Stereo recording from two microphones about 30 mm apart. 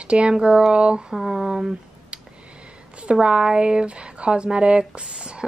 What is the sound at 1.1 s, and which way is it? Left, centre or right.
Speech, centre.